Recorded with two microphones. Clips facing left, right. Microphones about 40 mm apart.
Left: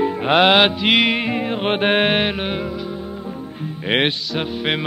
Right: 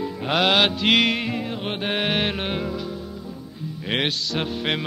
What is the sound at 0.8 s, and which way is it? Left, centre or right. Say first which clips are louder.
Music: left 3 dB; centre.